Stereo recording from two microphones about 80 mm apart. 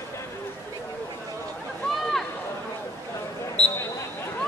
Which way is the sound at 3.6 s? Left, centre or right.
Centre.